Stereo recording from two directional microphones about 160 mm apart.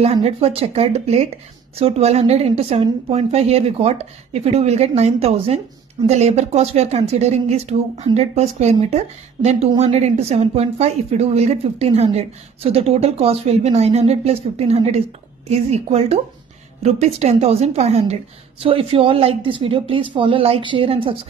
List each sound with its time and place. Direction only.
0.0 s a woman's voice: 40° right (ahead or behind)